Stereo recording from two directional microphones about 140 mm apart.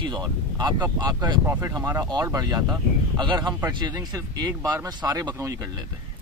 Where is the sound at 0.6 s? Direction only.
30° right (ahead or behind).